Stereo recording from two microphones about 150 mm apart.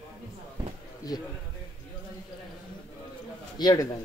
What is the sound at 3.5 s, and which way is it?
Speech, 25° left (ahead or behind).